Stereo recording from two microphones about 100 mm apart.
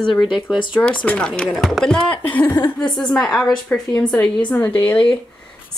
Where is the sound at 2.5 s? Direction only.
50° left (ahead or behind).